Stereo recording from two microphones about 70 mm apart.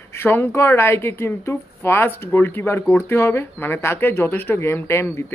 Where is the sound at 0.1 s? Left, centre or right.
Left.